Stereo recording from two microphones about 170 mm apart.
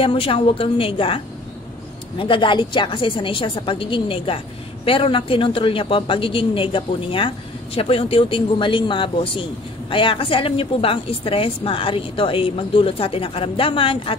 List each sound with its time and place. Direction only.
0.0 s a man's voice: 30° left (ahead or behind)